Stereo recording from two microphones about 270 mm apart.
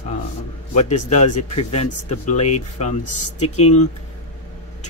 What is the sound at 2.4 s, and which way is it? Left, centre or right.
Speech, left.